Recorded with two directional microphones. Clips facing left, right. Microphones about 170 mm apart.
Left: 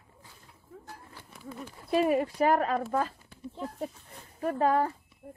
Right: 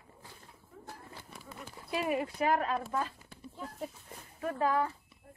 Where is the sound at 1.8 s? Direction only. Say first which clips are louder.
Left 7 dB; 40° left (ahead or behind).